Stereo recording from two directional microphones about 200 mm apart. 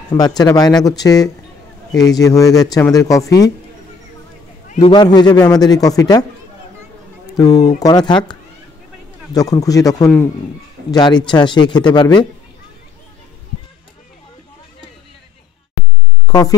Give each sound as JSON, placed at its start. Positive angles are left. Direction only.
{"t": 0.4, "sound": "a man's voice", "side_deg": 20}
{"t": 4.7, "sound": "a man's voice", "side_deg": 20}
{"t": 7.3, "sound": "a man's voice", "side_deg": 20}
{"t": 16.3, "sound": "speech", "side_deg": 15}